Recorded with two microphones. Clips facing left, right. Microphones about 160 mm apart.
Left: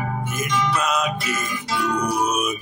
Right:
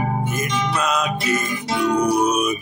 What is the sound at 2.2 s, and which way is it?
Music, 5° left (ahead or behind).